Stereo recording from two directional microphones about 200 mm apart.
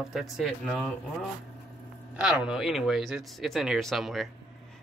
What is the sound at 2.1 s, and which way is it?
Speech, 5° right (ahead or behind).